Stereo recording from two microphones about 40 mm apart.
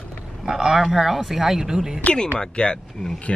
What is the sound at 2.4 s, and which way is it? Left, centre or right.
Speech, left.